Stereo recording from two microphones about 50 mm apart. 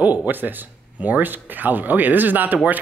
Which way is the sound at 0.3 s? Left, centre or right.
Right.